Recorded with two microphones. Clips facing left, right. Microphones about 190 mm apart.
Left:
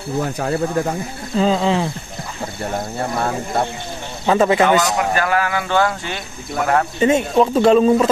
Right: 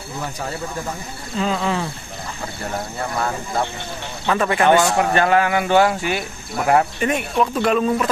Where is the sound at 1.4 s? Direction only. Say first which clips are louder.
Left 5 dB; 25° left (ahead or behind).